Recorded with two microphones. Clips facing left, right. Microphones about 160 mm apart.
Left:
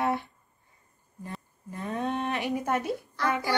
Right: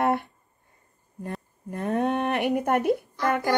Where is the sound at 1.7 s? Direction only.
55° right (ahead or behind).